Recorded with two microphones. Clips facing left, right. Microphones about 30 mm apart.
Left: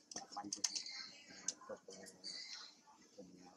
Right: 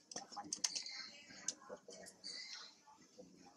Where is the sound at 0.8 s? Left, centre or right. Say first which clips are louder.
Even; centre.